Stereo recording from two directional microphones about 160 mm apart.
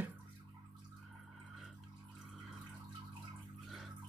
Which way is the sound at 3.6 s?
Centre (ahead or behind).